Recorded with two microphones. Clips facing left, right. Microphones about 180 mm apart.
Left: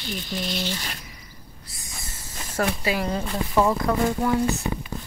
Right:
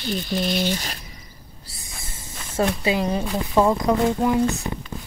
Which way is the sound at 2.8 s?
20° right (ahead or behind).